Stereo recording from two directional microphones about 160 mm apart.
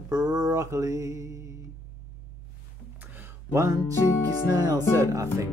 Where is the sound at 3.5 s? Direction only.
15° right (ahead or behind).